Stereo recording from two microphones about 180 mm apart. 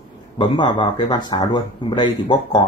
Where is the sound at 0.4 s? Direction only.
25° left (ahead or behind).